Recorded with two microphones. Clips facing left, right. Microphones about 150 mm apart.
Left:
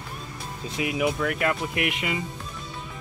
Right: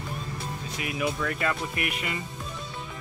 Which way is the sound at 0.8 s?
20° left (ahead or behind).